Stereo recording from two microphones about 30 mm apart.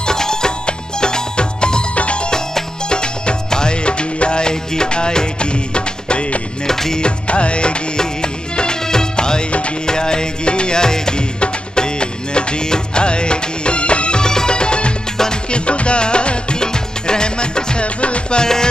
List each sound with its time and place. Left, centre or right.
0.0 s music: left
6.7 s music: centre
7.0 s music: left
14.2 s music: left
17.8 s music: left
18.4 s music: left